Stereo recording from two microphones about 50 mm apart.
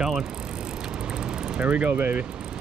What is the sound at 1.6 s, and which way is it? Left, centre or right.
Speech, right.